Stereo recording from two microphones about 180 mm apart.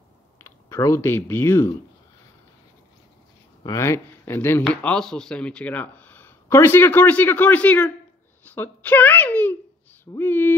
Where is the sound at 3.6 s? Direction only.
15° left (ahead or behind).